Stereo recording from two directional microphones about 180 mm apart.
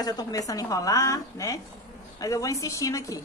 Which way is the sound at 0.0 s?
20° left (ahead or behind).